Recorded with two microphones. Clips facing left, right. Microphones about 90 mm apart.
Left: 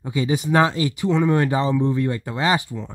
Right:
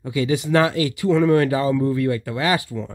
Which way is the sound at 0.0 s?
20° left (ahead or behind).